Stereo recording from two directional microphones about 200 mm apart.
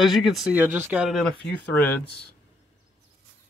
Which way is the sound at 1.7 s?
10° left (ahead or behind).